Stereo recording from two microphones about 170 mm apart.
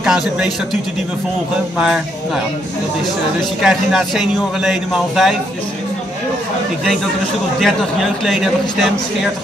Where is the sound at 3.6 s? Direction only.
Centre (ahead or behind).